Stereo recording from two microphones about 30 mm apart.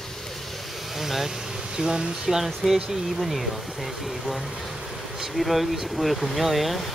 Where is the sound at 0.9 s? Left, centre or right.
Centre.